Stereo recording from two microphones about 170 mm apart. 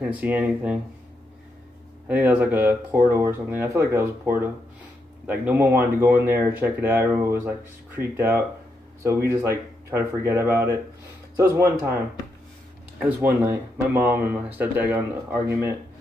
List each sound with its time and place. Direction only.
0.1 s speech: 10° right (ahead or behind)
2.0 s speech: 10° right (ahead or behind)
13.0 s speech: 15° right (ahead or behind)